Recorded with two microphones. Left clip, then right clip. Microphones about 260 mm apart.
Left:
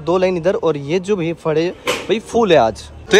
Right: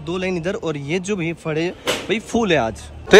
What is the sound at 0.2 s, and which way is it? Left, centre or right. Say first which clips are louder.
Speech: left 8 dB; centre.